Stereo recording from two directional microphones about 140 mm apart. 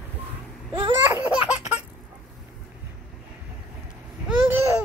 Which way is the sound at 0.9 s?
20° right (ahead or behind).